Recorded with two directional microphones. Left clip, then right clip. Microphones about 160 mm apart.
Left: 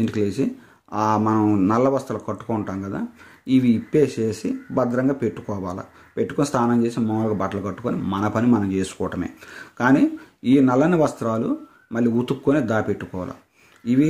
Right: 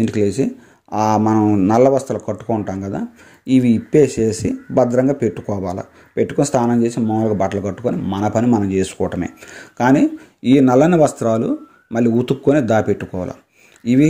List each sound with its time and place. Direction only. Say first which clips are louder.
0.0 s speech: right 5 dB; 25° right (ahead or behind)